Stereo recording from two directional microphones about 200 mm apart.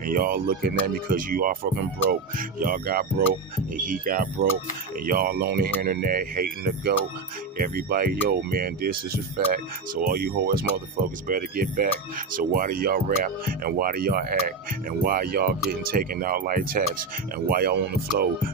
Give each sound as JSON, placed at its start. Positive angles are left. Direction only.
{"t": 0.0, "sound": "speech", "side_deg": -45}